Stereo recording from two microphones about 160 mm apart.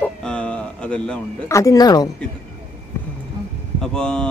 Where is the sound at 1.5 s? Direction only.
20° left (ahead or behind).